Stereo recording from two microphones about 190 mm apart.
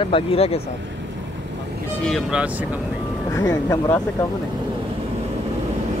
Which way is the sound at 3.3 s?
15° left (ahead or behind).